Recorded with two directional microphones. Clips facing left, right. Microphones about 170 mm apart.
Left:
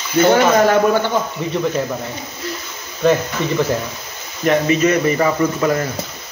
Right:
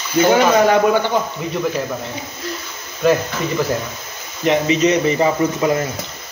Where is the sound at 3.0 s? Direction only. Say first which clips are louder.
Even; 5° right (ahead or behind).